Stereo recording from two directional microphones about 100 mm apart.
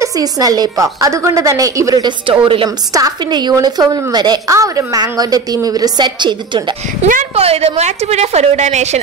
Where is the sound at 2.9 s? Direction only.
35° right (ahead or behind).